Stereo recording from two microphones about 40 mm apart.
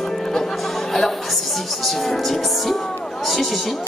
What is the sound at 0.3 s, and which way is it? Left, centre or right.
Music, centre.